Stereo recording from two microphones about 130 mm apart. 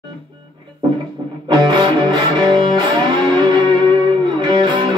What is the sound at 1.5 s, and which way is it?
Music, 35° right (ahead or behind).